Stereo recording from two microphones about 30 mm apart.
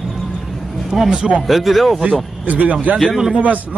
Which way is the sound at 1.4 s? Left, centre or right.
Centre.